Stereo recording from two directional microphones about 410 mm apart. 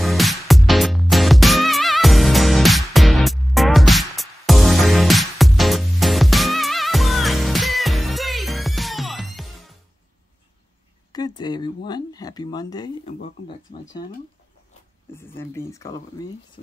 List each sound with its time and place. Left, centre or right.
0.0 s music: centre
11.1 s a sound: centre
15.1 s speech: centre
16.6 s speech: centre